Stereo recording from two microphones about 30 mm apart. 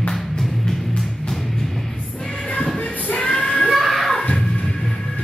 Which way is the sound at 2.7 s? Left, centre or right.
Left.